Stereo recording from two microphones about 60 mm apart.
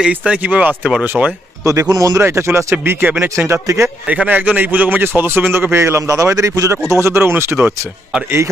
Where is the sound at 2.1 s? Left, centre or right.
Right.